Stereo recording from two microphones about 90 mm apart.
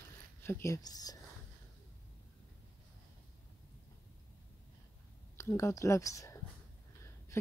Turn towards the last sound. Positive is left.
turn(degrees=35)  # may be behind; listen again after turning